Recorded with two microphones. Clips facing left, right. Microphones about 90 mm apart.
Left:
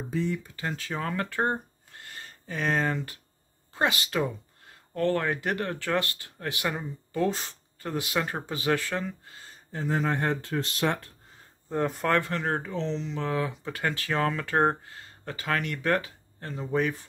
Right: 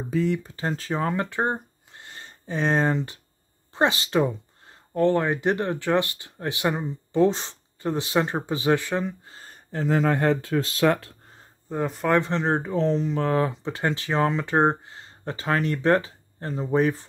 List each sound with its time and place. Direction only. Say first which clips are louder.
0.4 s speech: right 5 dB; 30° right (ahead or behind)
9.7 s speech: right 5 dB; 80° right
11.7 s speech: right 1 dB; centre (ahead or behind)
12.1 s speech: right 7 dB; 20° right (ahead or behind)
12.7 s speech: right 8 dB; 45° right (ahead or behind)
13.5 s speech: right 4 dB; 25° right (ahead or behind)